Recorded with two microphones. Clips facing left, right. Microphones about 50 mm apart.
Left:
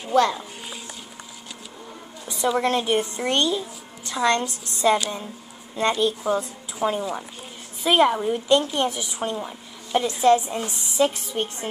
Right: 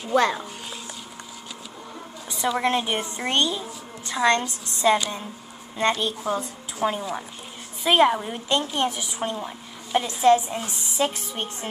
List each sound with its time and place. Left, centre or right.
0.1 s speech: right
2.3 s a sound: centre
2.6 s a woman's voice: centre